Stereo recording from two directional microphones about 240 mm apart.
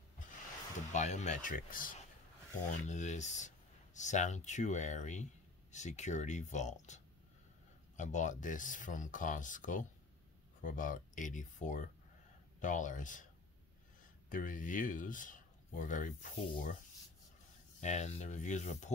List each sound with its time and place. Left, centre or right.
0.7 s speech: left
8.0 s speech: left
14.3 s speech: left
17.7 s speech: left